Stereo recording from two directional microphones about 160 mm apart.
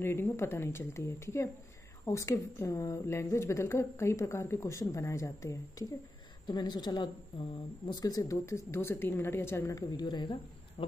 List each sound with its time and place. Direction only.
0.0 s a woman's voice: 15° left (ahead or behind)
10.8 s speech: 40° left (ahead or behind)